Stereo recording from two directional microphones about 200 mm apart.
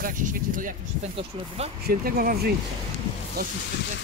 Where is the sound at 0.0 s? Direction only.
40° right (ahead or behind).